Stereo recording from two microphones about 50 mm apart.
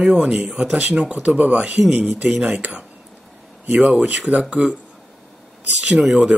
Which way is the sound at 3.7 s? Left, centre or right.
Right.